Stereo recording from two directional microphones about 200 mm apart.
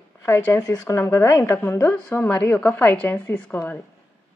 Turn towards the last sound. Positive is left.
turn(degrees=10)  # may be behind; listen again after turning